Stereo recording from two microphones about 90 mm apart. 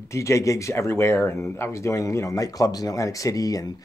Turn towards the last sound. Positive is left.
turn(degrees=40)  # may be behind; listen again after turning